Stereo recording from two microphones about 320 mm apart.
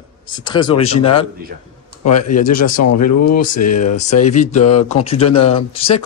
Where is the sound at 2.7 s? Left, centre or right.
Left.